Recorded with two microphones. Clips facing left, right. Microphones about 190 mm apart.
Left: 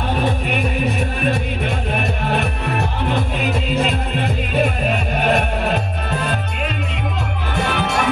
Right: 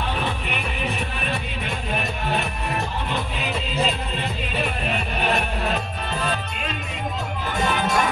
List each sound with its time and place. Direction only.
0.1 s music: 45° left (ahead or behind)
2.7 s music: 60° left (ahead or behind)
4.6 s music: 50° left (ahead or behind)
7.5 s music: 65° left (ahead or behind)